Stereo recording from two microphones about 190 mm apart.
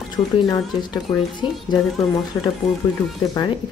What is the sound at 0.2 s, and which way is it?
Speech, 15° left (ahead or behind).